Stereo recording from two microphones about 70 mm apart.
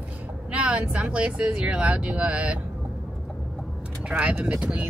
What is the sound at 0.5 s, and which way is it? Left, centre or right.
Speech, centre.